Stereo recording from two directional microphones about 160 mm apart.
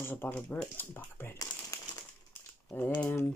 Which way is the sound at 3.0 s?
15° left (ahead or behind).